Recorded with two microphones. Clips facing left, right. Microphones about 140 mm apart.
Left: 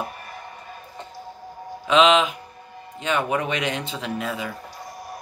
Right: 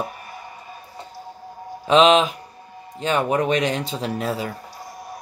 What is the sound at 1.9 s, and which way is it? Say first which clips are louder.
Speech: right 2 dB; 35° right (ahead or behind).